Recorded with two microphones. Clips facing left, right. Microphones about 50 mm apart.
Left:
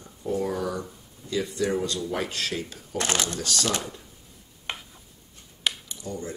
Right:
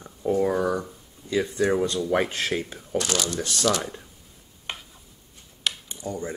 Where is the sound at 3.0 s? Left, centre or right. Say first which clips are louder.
Left 1 dB; left.